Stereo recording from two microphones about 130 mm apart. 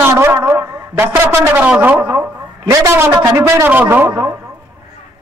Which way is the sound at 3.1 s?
25° right (ahead or behind).